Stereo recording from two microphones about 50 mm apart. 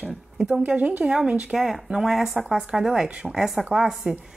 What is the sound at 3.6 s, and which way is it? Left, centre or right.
Speech, right.